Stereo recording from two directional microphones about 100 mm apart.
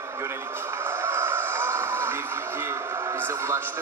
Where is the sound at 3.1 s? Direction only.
25° right (ahead or behind).